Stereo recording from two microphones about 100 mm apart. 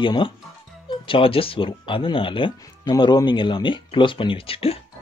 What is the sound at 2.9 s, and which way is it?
Speech, 45° left (ahead or behind).